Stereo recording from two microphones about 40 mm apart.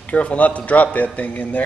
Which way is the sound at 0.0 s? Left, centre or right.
Left.